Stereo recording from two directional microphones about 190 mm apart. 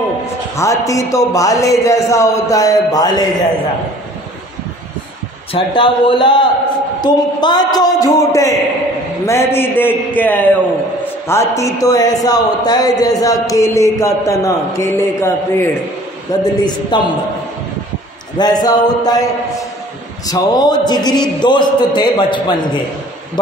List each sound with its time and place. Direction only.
0.6 s a man's voice: 15° left (ahead or behind)
5.5 s a man's voice: 25° left (ahead or behind)
18.4 s a man's voice: 20° left (ahead or behind)
20.2 s a man's voice: 20° left (ahead or behind)